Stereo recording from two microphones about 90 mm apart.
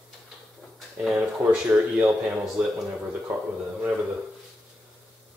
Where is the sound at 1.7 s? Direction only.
20° right (ahead or behind).